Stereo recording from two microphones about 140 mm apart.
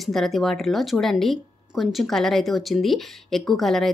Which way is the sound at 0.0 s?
Centre (ahead or behind).